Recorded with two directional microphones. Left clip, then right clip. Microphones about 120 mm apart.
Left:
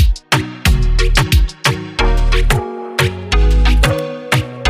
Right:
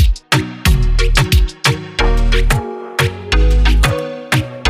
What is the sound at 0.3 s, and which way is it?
Music, centre (ahead or behind).